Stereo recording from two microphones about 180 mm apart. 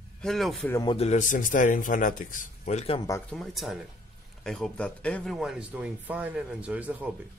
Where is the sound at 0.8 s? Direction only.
35° left (ahead or behind).